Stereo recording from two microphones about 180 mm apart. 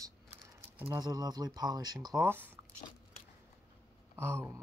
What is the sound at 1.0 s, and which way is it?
Speech, 20° right (ahead or behind).